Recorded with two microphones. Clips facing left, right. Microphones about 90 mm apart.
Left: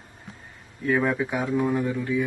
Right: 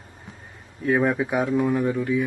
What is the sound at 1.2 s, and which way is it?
Speech, 10° right (ahead or behind).